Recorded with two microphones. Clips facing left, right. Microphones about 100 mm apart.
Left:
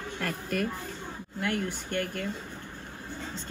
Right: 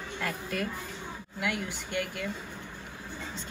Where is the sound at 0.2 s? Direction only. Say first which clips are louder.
Left 2 dB; 50° left (ahead or behind).